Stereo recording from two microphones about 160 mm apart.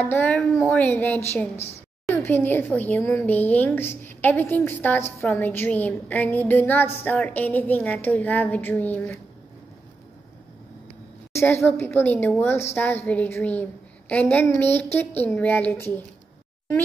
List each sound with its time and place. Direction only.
0.0 s a woman's voice: 10° left (ahead or behind)
11.3 s a woman's voice: 15° left (ahead or behind)